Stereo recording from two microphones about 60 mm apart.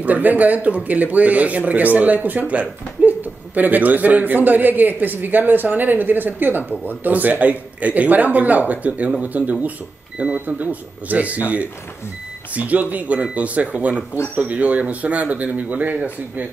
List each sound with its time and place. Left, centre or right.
0.0 s speech: right
10.4 s speech: right
12.5 s speech: right